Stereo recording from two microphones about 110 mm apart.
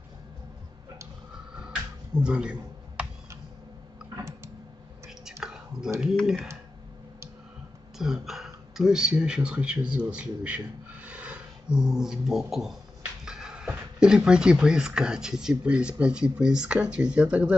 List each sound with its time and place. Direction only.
2.1 s a sound: 10° right (ahead or behind)
4.2 s typing: 25° right (ahead or behind)
5.4 s clicking: 5° right (ahead or behind)
8.0 s speech: 5° right (ahead or behind)